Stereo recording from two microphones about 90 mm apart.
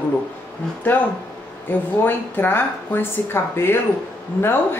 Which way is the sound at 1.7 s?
20° left (ahead or behind).